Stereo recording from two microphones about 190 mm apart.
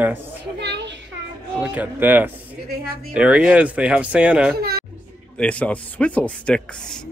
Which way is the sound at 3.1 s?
5° right (ahead or behind).